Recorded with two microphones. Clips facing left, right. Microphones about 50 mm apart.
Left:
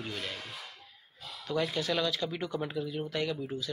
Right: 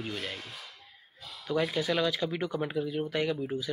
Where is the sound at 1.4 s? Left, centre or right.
Centre.